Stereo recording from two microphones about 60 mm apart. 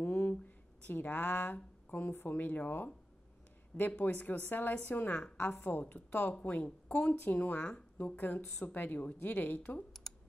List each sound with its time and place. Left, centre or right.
0.0 s a sound: left
0.4 s speech: left
4.0 s speech: left
10.1 s typing: centre